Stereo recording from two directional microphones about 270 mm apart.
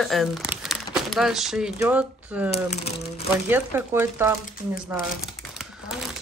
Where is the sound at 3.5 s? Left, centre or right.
Centre.